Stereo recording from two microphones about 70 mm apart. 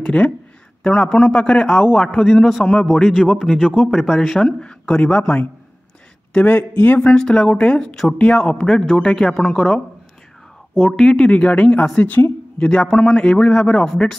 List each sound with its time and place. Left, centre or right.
0.0 s a man's voice: centre
6.3 s a man's voice: left; by 8.2 s centre
8.2 s a man's voice: centre
10.8 s a man's voice: centre